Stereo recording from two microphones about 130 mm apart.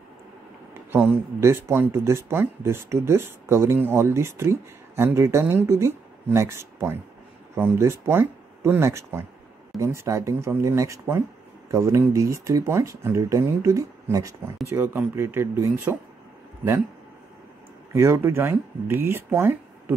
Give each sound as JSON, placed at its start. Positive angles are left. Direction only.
{"t": 0.7, "sound": "speech", "side_deg": -15}
{"t": 17.9, "sound": "speech", "side_deg": -20}